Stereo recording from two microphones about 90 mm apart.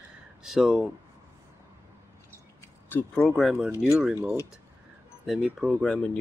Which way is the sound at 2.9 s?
20° left (ahead or behind).